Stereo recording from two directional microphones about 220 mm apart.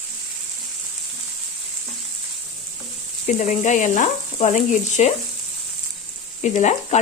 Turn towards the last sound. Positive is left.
turn(degrees=30)  # may be behind; listen again after turning